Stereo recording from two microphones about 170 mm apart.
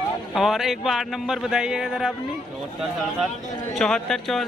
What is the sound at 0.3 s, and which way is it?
Speech, centre (ahead or behind).